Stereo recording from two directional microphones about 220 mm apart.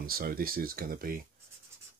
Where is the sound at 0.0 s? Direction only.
40° right (ahead or behind).